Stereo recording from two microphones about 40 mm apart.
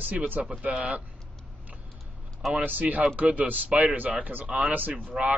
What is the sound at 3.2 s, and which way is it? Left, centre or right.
Speech, right.